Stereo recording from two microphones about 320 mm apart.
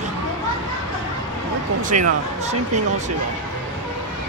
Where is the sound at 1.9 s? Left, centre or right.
Right.